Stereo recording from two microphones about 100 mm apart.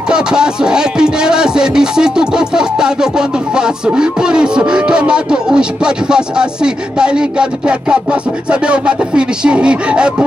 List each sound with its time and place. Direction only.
0.1 s music: 10° right (ahead or behind)